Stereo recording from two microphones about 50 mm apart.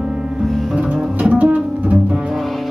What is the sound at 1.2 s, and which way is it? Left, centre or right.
Music, right.